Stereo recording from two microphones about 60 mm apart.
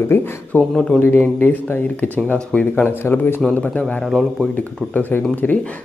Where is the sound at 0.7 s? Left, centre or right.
Centre.